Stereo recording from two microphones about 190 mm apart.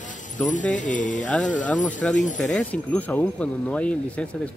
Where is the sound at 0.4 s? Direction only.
40° left (ahead or behind).